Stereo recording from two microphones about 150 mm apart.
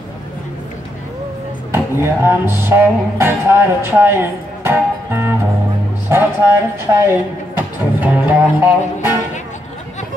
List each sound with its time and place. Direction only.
1.7 s music: 15° right (ahead or behind)
6.9 s speech: 15° right (ahead or behind)